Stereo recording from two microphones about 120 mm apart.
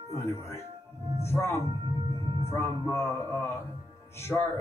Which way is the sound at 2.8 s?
25° left (ahead or behind).